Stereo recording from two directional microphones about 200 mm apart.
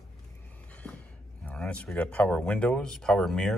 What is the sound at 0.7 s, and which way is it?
Speech, 5° left (ahead or behind).